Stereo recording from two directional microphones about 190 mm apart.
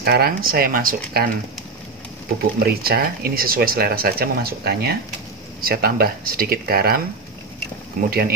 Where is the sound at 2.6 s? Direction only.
55° right (ahead or behind).